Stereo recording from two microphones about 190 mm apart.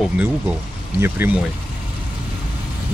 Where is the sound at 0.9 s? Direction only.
10° right (ahead or behind).